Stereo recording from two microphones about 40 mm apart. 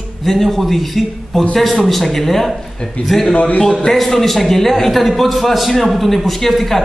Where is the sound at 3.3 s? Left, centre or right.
Left.